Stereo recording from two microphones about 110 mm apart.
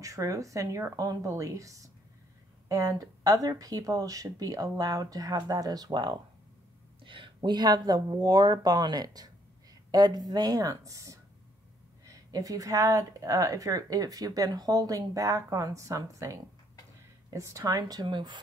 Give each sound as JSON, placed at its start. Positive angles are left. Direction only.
{"t": 0.0, "sound": "a woman's voice", "side_deg": -30}